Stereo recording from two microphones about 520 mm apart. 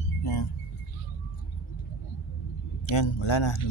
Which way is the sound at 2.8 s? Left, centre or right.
Left.